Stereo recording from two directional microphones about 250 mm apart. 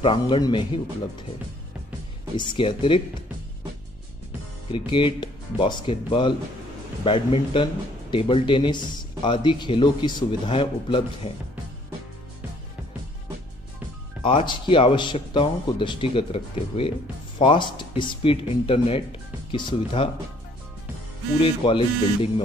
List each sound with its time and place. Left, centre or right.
0.0 s speech: centre
2.3 s speech: centre
4.6 s speech: left
14.2 s speech: centre
21.4 s speech: left